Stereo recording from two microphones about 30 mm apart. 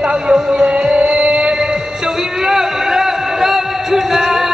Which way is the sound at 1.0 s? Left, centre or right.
Right.